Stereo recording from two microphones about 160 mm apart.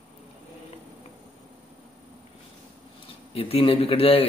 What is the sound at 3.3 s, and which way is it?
Speech, 35° left (ahead or behind).